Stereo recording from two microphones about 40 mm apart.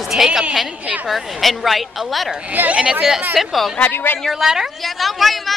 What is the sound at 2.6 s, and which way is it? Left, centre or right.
Speech, right.